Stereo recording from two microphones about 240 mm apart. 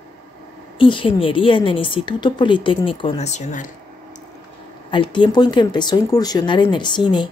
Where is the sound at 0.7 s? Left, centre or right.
Left.